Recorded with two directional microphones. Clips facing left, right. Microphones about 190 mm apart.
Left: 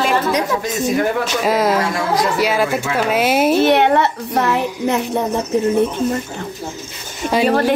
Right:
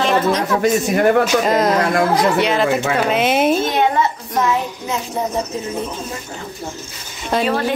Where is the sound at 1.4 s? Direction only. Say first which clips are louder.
Even; 5° left (ahead or behind).